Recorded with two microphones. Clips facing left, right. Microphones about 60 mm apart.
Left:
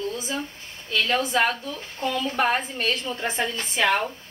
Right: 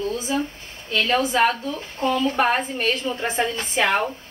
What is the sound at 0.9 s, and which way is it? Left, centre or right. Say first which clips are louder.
Speech: right 3 dB; centre.